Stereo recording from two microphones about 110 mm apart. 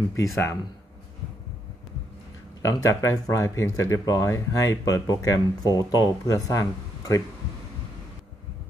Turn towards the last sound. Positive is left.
turn(degrees=30)  # may be behind; listen again after turning